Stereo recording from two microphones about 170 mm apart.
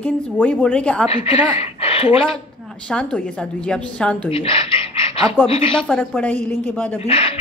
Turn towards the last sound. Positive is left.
turn(degrees=35)  # may be behind; listen again after turning